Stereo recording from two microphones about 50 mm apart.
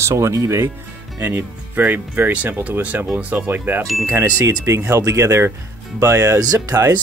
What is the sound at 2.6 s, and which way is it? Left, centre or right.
Speech, right.